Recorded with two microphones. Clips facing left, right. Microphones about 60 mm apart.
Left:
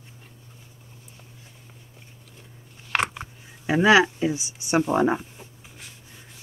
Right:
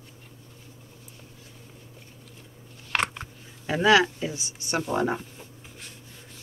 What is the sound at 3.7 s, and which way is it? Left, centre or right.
Speech, centre.